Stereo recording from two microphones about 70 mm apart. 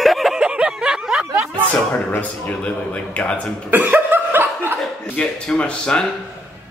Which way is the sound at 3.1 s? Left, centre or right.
Centre.